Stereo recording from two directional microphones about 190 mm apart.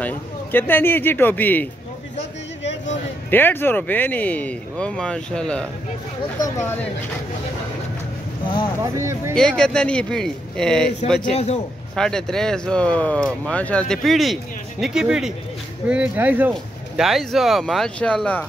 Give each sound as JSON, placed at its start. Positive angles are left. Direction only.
{"t": 0.0, "sound": "speech", "side_deg": 10}
{"t": 3.3, "sound": "speech", "side_deg": 10}
{"t": 8.9, "sound": "speech", "side_deg": -15}
{"t": 9.3, "sound": "speech", "side_deg": 5}
{"t": 11.3, "sound": "a man's voice", "side_deg": 35}
{"t": 11.9, "sound": "speech", "side_deg": 5}